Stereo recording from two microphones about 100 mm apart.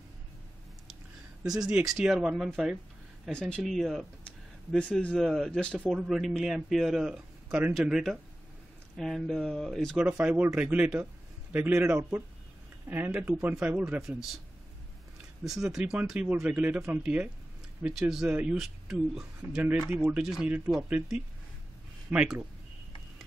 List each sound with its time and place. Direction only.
1.6 s speech: 5° right (ahead or behind)
3.3 s speech: 10° left (ahead or behind)
5.9 s speech: 5° right (ahead or behind)
9.9 s speech: 10° right (ahead or behind)
13.1 s speech: 5° right (ahead or behind)
15.4 s speech: 5° right (ahead or behind)
20.4 s speech: 15° right (ahead or behind)
22.1 s speech: 10° right (ahead or behind)